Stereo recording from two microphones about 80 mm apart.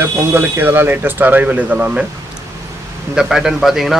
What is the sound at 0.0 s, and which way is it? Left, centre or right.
Speech, right.